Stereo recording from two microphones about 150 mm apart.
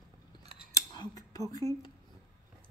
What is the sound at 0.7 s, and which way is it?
Scissors, 25° left (ahead or behind).